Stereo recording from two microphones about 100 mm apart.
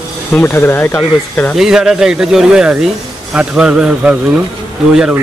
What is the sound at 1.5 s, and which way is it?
Speech, 5° right (ahead or behind).